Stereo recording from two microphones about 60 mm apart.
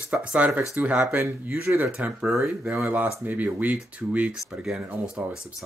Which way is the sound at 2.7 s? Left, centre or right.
Right.